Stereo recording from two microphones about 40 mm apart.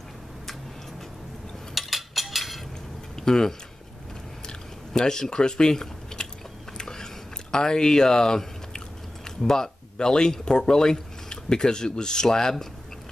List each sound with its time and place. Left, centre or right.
1.8 s a sound: centre
3.2 s speech: centre
4.5 s typing: centre
6.8 s biting: centre
7.5 s speech: centre